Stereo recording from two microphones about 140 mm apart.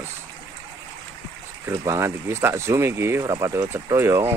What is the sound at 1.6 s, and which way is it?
Speech, 20° right (ahead or behind).